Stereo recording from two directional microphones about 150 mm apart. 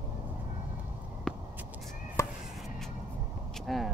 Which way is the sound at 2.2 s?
20° left (ahead or behind).